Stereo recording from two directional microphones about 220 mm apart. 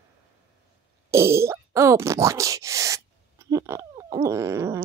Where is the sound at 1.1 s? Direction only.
10° right (ahead or behind).